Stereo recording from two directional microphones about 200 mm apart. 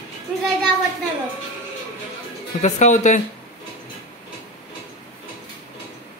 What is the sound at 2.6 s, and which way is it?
Speech, 35° left (ahead or behind).